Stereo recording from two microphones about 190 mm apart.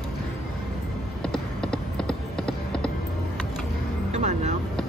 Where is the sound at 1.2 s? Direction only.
5° left (ahead or behind).